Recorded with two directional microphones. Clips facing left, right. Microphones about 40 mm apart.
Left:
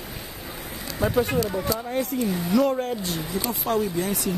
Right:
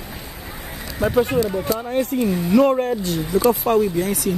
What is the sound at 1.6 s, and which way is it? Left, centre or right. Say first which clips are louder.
Speech: right 4 dB; right.